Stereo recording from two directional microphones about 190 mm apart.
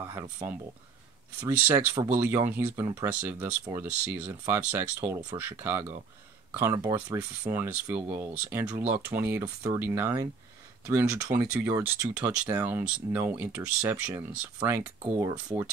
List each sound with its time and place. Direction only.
0.0 s speech: 15° right (ahead or behind)